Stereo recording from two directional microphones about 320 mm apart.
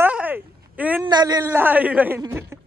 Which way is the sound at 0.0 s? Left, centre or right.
Centre.